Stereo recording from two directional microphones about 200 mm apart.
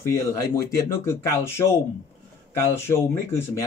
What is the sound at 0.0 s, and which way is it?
Speech, 15° left (ahead or behind).